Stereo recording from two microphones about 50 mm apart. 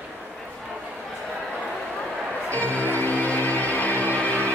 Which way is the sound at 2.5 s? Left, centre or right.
Left.